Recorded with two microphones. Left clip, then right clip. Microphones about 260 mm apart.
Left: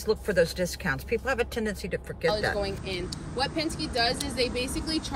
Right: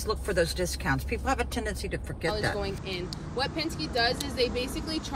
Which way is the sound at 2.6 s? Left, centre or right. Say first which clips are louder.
Left 2 dB; centre.